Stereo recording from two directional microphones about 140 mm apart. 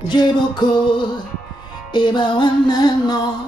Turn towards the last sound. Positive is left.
turn(degrees=30)  # may be behind; listen again after turning